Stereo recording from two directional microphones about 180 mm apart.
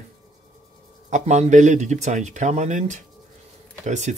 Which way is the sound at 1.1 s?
40° right (ahead or behind).